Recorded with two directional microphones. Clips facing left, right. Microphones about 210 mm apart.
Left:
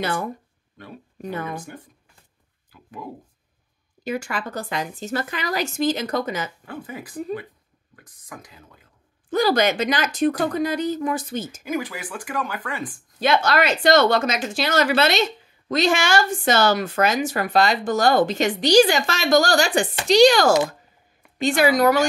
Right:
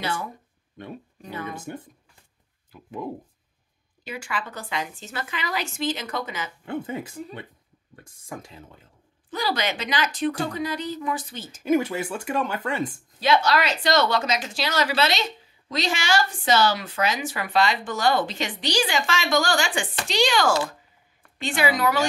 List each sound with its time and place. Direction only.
0.0 s speech: 50° left (ahead or behind)
1.6 s speech: 25° right (ahead or behind)
4.0 s speech: 45° left (ahead or behind)
6.6 s speech: 25° right (ahead or behind)
9.3 s speech: 45° left (ahead or behind)
11.6 s speech: 25° right (ahead or behind)
13.2 s speech: 50° left (ahead or behind)